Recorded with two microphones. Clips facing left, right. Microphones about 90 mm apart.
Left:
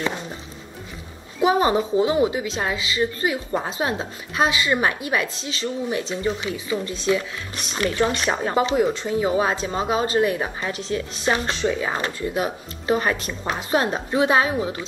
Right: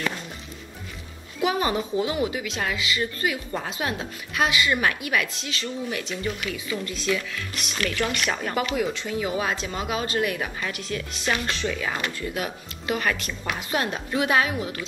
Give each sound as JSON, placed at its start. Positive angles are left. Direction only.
{"t": 1.4, "sound": "a woman's voice", "side_deg": 30}